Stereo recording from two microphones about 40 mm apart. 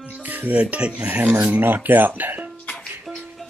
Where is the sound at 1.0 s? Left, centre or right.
Right.